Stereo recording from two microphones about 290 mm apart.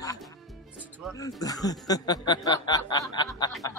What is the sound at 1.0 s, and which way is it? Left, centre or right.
Speech, centre.